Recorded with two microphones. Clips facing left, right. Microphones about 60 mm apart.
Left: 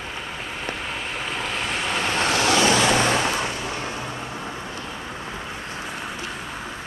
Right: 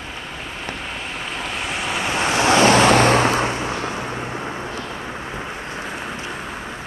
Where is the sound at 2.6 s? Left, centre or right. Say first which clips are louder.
Right 8 dB; right.